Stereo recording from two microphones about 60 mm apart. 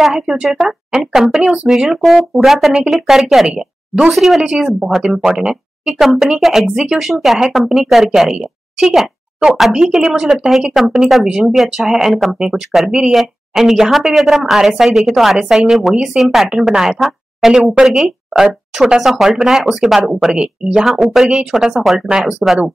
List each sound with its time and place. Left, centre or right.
0.0 s a woman's voice: centre
4.1 s a woman's voice: centre